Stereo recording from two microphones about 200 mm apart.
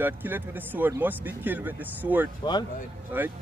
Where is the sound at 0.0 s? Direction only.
10° right (ahead or behind).